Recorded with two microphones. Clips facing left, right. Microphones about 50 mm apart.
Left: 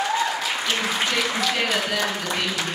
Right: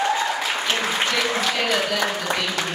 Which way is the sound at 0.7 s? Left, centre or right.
Right.